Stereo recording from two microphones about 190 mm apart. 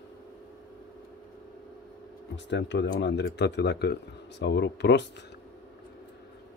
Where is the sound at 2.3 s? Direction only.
70° left (ahead or behind).